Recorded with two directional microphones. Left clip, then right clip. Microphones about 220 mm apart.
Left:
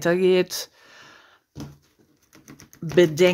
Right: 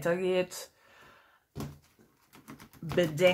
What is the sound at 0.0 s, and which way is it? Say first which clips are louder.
Speech: left 9 dB; 45° left (ahead or behind).